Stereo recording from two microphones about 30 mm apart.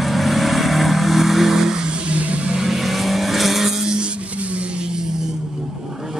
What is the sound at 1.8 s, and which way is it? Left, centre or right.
Vehicle, right.